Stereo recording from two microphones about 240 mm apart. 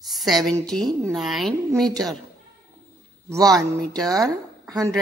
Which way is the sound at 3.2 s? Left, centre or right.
Centre.